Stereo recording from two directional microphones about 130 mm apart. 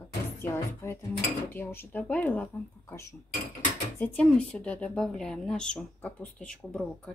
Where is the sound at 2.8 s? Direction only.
25° left (ahead or behind).